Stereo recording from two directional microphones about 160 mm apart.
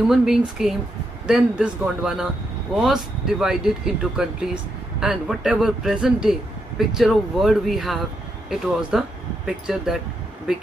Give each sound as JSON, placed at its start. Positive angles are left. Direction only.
{"t": 0.0, "sound": "speech", "side_deg": -5}